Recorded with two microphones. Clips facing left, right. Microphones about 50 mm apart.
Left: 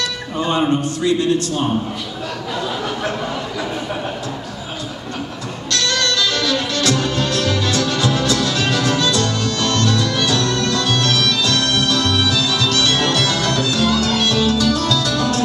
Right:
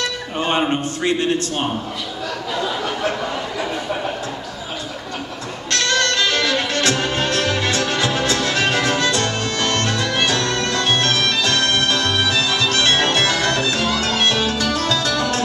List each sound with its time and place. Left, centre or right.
0.4 s a man's voice: right
5.7 s music: right